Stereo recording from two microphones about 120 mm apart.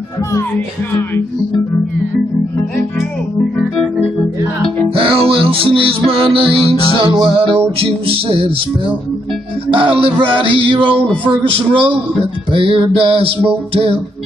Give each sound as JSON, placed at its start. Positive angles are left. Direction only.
{"t": 4.9, "sound": "music", "side_deg": -50}